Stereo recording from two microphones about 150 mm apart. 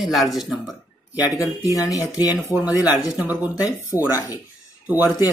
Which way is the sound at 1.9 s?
25° left (ahead or behind).